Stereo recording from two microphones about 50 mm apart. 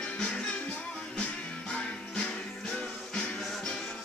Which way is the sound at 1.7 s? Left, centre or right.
Centre.